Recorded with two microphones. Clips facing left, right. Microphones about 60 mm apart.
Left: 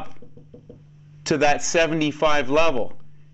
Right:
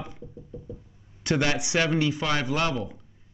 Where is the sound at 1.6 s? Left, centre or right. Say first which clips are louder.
Left 4 dB; left.